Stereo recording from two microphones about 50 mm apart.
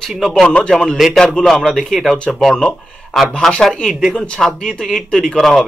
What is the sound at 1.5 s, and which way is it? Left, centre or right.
A man's voice, centre.